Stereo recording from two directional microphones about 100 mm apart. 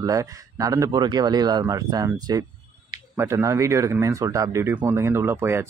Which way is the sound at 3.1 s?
30° right (ahead or behind).